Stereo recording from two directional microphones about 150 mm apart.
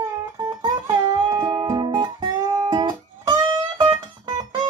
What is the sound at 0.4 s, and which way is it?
Music, 30° right (ahead or behind).